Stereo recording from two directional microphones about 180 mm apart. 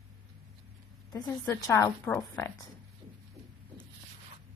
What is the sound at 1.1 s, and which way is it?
A woman's voice, 20° left (ahead or behind).